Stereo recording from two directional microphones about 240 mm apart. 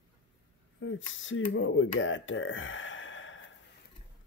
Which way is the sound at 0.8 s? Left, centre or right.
Left.